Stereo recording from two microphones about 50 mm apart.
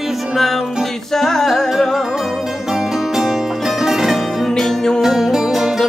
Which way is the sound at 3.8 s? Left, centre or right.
Centre.